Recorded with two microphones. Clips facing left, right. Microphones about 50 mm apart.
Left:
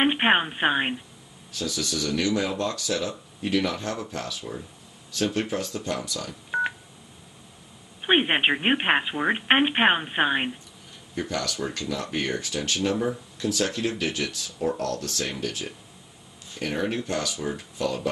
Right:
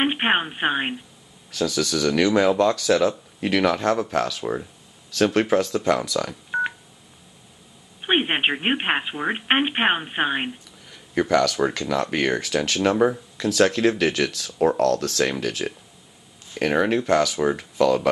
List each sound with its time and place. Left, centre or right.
0.0 s speech: centre
1.6 s speech: right
4.1 s speech: right
5.1 s speech: right
5.9 s speech: right
6.5 s telephone dialing: centre
8.0 s speech: centre
11.1 s speech: right
11.5 s speech: right
15.4 s speech: right
16.5 s speech: right